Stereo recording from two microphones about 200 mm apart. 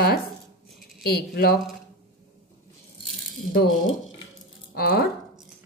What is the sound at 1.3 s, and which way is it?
Speech, 50° left (ahead or behind).